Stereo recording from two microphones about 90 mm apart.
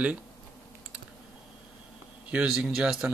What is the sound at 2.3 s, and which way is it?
Speech, 15° right (ahead or behind).